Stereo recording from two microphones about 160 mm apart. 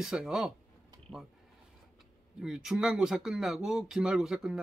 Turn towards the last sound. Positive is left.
turn(degrees=0)  # may be behind; listen again after turning